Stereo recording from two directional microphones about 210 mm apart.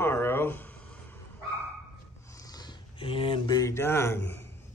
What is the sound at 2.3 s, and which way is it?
Speech, 20° left (ahead or behind).